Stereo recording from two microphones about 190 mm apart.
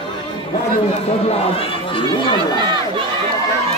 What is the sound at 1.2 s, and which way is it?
Speech, 30° left (ahead or behind).